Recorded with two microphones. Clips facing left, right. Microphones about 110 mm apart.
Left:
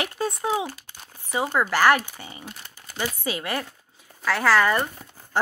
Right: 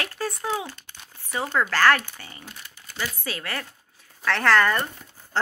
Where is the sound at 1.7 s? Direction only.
15° left (ahead or behind).